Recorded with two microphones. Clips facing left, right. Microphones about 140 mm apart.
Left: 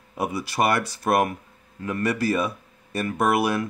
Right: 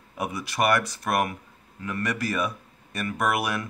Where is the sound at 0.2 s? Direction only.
30° left (ahead or behind).